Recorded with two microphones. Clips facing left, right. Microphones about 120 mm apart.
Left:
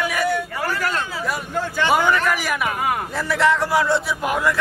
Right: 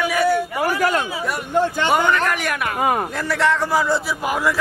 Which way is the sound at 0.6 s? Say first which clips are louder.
Right 6 dB; 15° right (ahead or behind).